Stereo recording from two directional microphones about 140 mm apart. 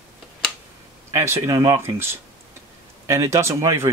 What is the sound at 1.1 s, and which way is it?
Speech, 20° right (ahead or behind).